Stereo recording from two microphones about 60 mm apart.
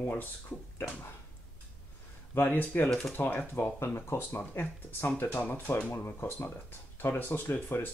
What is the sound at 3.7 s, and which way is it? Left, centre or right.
Speech, left.